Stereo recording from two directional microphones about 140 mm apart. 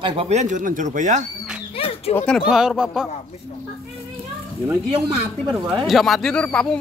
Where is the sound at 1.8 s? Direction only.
45° left (ahead or behind).